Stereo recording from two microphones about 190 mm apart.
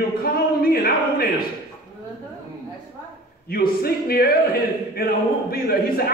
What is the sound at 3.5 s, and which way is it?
A man's voice, 55° left (ahead or behind).